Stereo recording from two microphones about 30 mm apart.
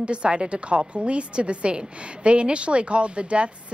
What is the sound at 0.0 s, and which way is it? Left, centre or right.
A woman's voice, right.